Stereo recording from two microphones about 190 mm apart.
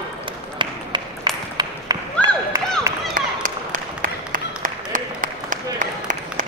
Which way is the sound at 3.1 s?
45° right (ahead or behind).